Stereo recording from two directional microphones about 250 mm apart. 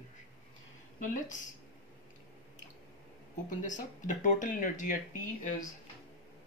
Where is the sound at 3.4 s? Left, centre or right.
Left.